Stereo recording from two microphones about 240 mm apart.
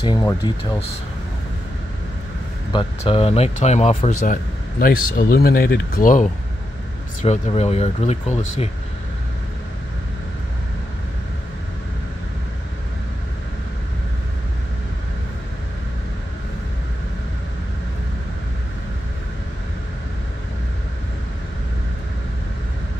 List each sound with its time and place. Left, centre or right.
0.0 s speech: centre
2.7 s speech: left
4.3 s speech: left